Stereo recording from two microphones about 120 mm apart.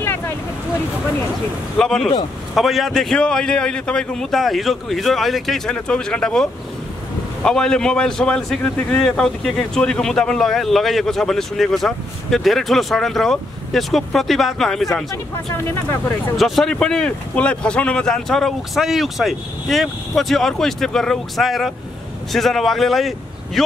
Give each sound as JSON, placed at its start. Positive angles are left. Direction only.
{"t": 1.8, "sound": "a man's voice", "side_deg": 5}
{"t": 15.5, "sound": "speech", "side_deg": 20}
{"t": 16.3, "sound": "a man's voice", "side_deg": 0}